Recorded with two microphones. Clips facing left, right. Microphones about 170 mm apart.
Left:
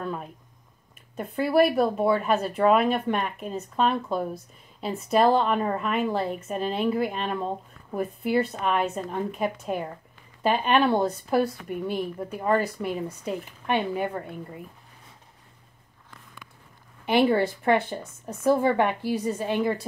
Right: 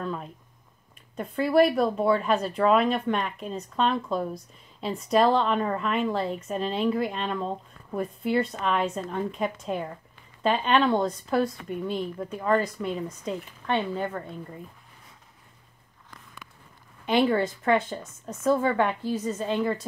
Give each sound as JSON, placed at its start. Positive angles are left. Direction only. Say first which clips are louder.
{"t": 0.0, "sound": "a woman's voice", "louder": "even", "side_deg": 5}
{"t": 17.0, "sound": "speech", "louder": "left 1 dB", "side_deg": 10}
{"t": 17.4, "sound": "speech", "louder": "left 2 dB", "side_deg": 65}
{"t": 17.7, "sound": "a woman's voice", "louder": "even", "side_deg": 15}